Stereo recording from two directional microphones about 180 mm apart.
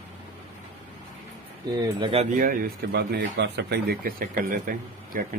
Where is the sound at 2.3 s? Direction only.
50° right (ahead or behind).